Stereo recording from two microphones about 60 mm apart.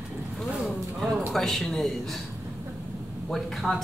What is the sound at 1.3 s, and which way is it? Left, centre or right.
Speech, centre.